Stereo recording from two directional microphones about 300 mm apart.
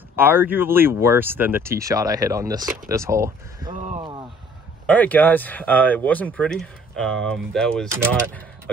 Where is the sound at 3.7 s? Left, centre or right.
Right.